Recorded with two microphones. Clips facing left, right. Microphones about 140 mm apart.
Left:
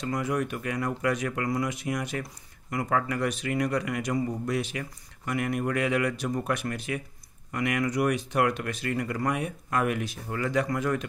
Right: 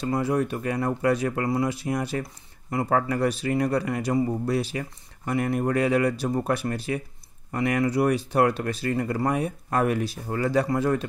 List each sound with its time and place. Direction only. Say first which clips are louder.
0.0 s speech: right 4 dB; 30° right (ahead or behind)